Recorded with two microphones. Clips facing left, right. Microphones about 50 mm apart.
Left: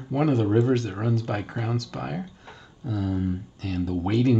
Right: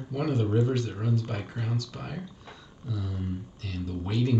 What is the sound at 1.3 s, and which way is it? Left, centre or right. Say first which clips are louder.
Speech: left 5 dB; left.